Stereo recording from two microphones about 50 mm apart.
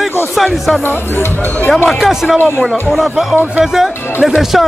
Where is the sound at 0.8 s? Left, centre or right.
Left.